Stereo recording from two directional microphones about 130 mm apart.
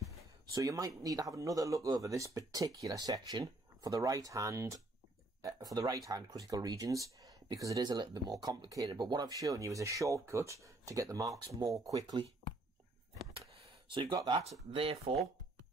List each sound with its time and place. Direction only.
0.6 s speech: 25° right (ahead or behind)
13.9 s speech: 40° right (ahead or behind)